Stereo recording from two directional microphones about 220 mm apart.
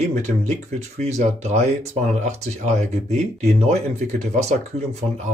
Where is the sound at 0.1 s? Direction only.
30° right (ahead or behind).